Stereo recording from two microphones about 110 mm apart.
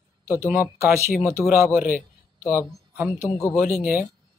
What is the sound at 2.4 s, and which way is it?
Speech, 15° right (ahead or behind).